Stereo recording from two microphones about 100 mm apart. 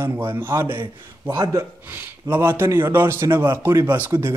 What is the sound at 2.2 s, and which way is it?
A man's voice, 25° right (ahead or behind).